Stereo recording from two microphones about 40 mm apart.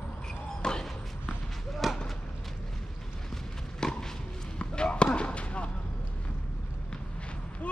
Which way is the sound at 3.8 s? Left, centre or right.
Centre.